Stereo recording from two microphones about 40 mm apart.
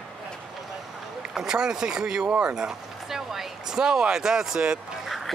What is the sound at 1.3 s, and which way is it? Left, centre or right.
Speech, centre.